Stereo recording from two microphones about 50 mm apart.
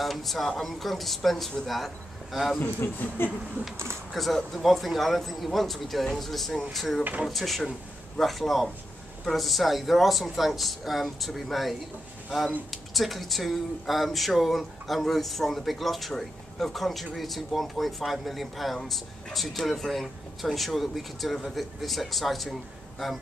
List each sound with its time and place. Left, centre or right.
0.0 s speech: centre
2.6 s speech: left
3.7 s speech: right
4.1 s speech: centre
12.7 s speech: centre